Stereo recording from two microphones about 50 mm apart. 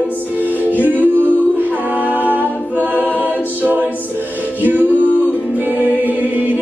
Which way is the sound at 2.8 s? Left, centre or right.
Right.